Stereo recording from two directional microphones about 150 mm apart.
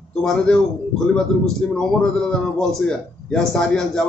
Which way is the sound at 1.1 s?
5° left (ahead or behind).